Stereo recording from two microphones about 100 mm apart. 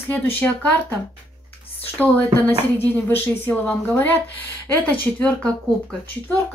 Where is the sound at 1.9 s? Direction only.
15° left (ahead or behind).